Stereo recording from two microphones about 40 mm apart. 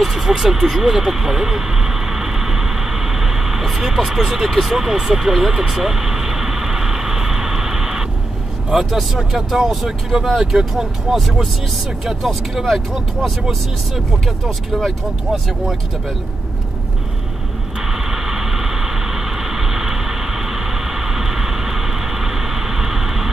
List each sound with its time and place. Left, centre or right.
0.0 s vehicle: centre
8.7 s speech: centre
12.0 s speech: centre
14.7 s speech: centre
17.9 s vehicle: centre